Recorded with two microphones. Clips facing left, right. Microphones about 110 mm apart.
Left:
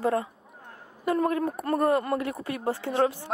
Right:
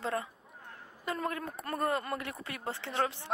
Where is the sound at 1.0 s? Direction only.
25° left (ahead or behind).